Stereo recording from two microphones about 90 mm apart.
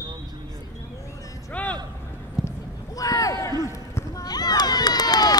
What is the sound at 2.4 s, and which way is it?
Clip-clop, 5° right (ahead or behind).